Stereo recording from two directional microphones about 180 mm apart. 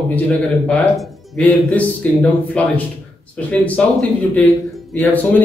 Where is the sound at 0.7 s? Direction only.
Centre (ahead or behind).